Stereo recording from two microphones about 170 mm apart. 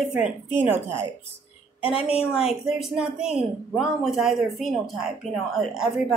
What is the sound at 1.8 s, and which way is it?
Speech, 30° left (ahead or behind).